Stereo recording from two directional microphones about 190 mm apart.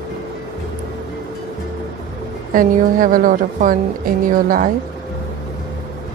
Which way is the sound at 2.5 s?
45° right (ahead or behind).